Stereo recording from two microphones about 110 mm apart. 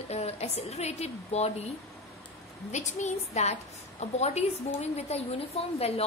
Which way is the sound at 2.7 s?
90° left.